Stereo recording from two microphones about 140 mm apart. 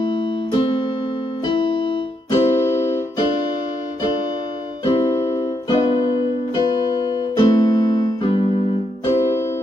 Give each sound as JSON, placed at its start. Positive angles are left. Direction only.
{"t": 0.0, "sound": "music", "side_deg": 40}
{"t": 1.4, "sound": "keyboard", "side_deg": 40}
{"t": 4.8, "sound": "music", "side_deg": 40}